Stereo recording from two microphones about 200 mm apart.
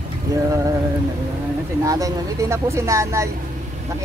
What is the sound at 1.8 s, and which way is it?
Speech, 15° right (ahead or behind).